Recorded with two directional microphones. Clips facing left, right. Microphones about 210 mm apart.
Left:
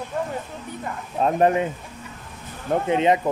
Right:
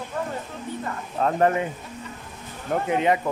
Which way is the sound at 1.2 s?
20° left (ahead or behind).